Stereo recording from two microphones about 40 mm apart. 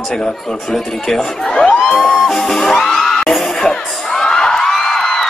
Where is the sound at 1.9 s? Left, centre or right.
Left.